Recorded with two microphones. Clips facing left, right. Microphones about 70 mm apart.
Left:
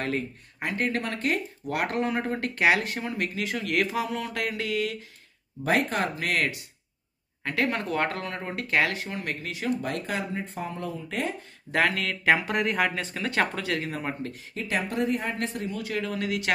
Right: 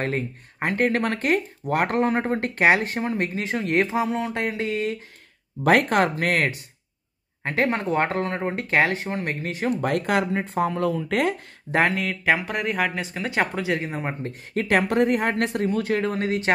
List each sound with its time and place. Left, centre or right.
0.0 s speech: right
5.6 s speech: right
6.0 s speech: right
9.8 s speech: right
11.7 s speech: right
12.0 s speech: centre; by 14.3 s right
14.5 s speech: right